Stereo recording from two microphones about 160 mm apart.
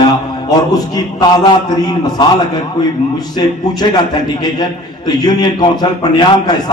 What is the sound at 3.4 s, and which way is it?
A man's voice, 25° left (ahead or behind).